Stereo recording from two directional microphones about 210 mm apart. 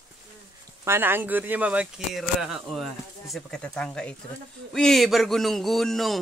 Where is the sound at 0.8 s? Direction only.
10° right (ahead or behind).